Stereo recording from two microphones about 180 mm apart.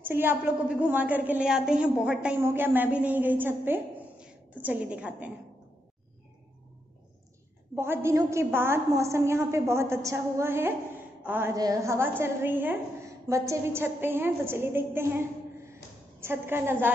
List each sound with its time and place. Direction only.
0.0 s a woman's voice: 10° right (ahead or behind)
7.7 s a woman's voice: 15° right (ahead or behind)